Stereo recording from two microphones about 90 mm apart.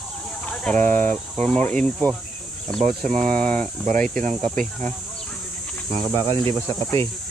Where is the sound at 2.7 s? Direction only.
5° left (ahead or behind).